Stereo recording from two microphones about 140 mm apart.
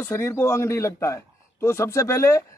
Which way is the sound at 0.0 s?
20° left (ahead or behind).